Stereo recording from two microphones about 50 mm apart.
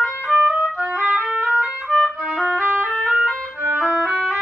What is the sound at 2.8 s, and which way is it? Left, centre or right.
Music, left.